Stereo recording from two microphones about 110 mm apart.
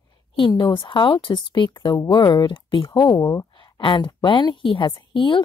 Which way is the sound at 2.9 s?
35° left (ahead or behind).